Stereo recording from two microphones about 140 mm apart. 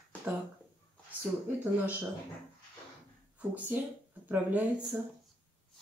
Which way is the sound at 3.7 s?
15° right (ahead or behind).